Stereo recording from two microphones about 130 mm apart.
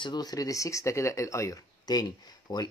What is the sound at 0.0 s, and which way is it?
Speech, 30° left (ahead or behind).